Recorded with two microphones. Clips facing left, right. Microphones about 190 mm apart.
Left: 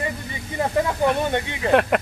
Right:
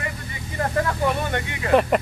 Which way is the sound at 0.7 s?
20° left (ahead or behind).